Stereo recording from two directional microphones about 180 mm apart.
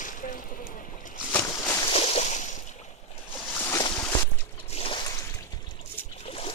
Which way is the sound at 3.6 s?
20° left (ahead or behind).